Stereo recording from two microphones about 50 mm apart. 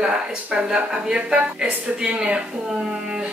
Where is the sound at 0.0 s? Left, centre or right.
Centre.